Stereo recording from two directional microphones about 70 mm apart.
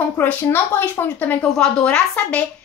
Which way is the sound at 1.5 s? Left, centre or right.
Centre.